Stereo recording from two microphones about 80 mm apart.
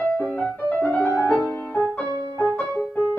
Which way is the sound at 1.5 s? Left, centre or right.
Centre.